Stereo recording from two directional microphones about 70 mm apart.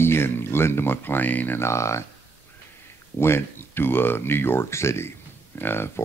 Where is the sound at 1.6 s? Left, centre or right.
Left.